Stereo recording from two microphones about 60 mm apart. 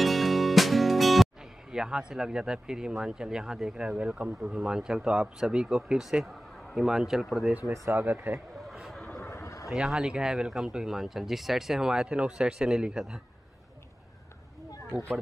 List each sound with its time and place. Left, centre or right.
0.0 s music: centre
1.7 s speech: centre
7.9 s speech: right
9.2 s a sound: left
9.7 s speech: centre